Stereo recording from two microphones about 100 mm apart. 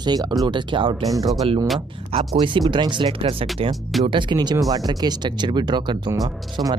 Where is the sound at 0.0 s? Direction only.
45° right (ahead or behind).